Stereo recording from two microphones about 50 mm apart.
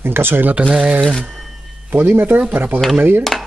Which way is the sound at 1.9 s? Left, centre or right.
Right.